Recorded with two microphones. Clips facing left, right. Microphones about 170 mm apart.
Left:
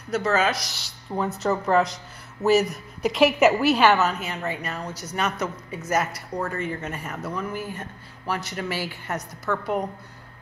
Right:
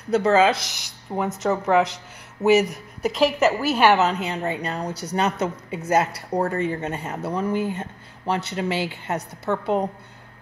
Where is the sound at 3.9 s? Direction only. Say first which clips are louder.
Right 3 dB; 25° right (ahead or behind).